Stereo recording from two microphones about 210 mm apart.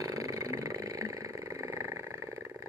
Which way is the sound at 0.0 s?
15° right (ahead or behind).